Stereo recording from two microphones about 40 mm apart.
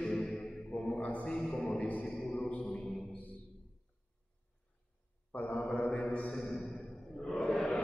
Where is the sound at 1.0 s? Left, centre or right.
Left.